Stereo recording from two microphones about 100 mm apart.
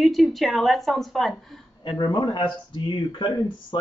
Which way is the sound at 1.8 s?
45° left (ahead or behind).